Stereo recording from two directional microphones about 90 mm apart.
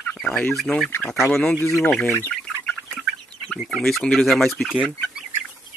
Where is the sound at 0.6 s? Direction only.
Centre (ahead or behind).